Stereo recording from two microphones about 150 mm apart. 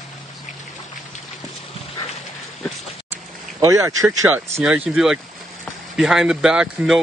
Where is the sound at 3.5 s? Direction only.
20° right (ahead or behind).